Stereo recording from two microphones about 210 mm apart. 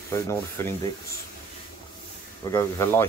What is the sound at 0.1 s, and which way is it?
Speech, 10° left (ahead or behind).